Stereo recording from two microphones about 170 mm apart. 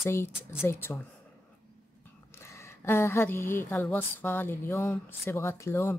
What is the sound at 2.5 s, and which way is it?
Speech, 15° left (ahead or behind).